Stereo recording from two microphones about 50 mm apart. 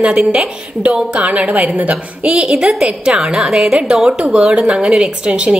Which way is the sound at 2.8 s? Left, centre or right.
Centre.